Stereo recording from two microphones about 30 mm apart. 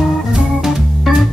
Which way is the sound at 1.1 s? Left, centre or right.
Centre.